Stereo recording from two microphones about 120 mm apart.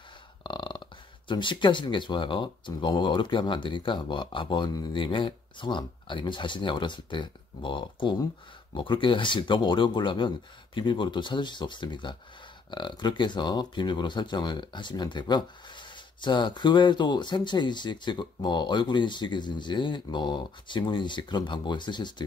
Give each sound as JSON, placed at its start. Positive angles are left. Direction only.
{"t": 0.4, "sound": "speech", "side_deg": 40}